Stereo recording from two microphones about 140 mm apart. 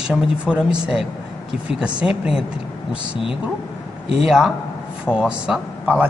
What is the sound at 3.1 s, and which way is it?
Speech, 40° left (ahead or behind).